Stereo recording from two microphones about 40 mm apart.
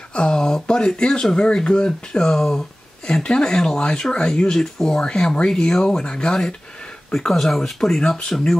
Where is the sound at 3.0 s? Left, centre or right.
Left.